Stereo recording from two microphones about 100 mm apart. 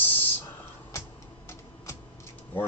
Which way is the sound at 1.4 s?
25° left (ahead or behind).